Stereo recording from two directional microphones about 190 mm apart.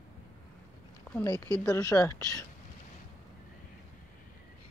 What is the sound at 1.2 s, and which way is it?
Speech, 20° left (ahead or behind).